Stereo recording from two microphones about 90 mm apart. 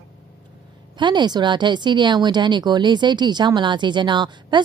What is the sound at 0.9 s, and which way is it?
Speech, 55° right (ahead or behind).